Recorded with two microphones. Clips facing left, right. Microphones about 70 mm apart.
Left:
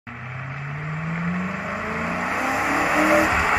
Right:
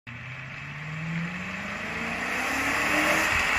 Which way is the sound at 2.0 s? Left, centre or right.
Left.